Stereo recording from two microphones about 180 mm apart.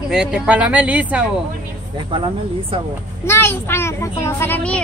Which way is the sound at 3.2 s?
15° left (ahead or behind).